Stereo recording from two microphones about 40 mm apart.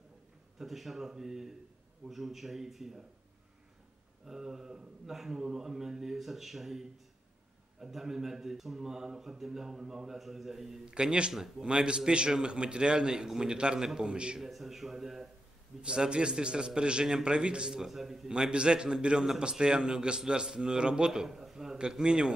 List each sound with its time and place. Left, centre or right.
0.6 s a man's voice: centre
4.3 s a man's voice: centre
10.9 s a man's voice: right
14.4 s a man's voice: centre
15.8 s a man's voice: right
18.3 s a man's voice: right